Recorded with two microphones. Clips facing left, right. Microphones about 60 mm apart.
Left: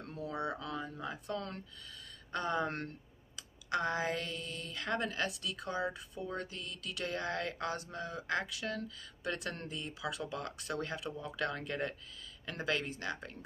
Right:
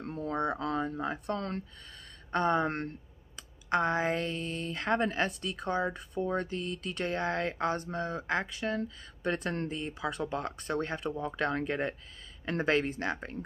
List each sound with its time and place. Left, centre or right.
0.0 s speech: right